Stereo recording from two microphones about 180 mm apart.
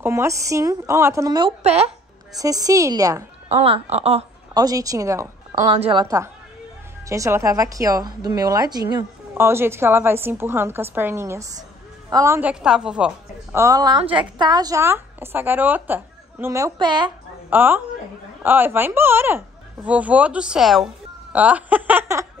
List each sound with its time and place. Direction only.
0.0 s speech: 15° right (ahead or behind)
1.6 s a woman's voice: 35° right (ahead or behind)
2.3 s a woman's voice: 20° right (ahead or behind)
3.6 s a woman's voice: 30° right (ahead or behind)
4.6 s a woman's voice: 20° right (ahead or behind)
5.7 s a woman's voice: 30° right (ahead or behind); by 13.6 s 5° right (ahead or behind)
13.6 s a woman's voice: 20° right (ahead or behind)
17.5 s speech: 10° right (ahead or behind)